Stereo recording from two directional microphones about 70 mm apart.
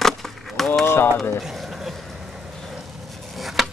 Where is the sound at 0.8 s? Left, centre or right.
Left.